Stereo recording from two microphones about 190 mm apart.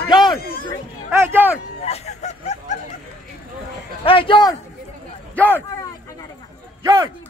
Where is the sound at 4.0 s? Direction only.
30° left (ahead or behind).